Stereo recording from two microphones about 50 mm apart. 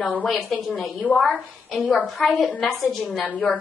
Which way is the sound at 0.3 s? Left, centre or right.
Centre.